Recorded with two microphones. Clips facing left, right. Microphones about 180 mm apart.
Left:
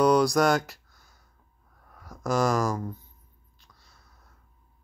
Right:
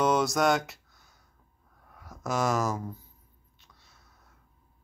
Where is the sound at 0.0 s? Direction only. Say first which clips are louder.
Left 4 dB; centre (ahead or behind).